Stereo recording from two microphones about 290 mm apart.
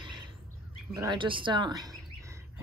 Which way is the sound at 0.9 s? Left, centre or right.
Centre.